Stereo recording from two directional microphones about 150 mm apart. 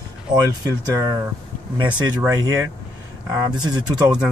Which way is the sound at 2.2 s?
20° right (ahead or behind).